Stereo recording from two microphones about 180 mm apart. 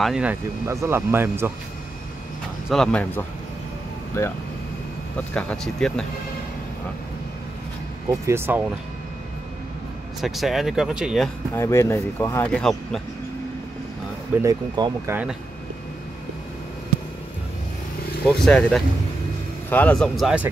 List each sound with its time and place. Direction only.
0.0 s speech: 5° right (ahead or behind)
2.7 s speech: 5° left (ahead or behind)
8.1 s speech: 15° right (ahead or behind)
10.2 s speech: centre (ahead or behind)
11.5 s speech: 15° left (ahead or behind)
12.4 s speech: 5° left (ahead or behind)
14.4 s speech: 20° right (ahead or behind)
18.4 s speech: 5° left (ahead or behind)